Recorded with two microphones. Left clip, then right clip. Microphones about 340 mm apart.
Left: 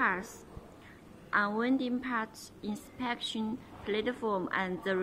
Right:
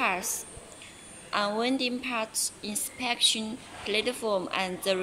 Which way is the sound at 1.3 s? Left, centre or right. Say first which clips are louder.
Right 2 dB; centre.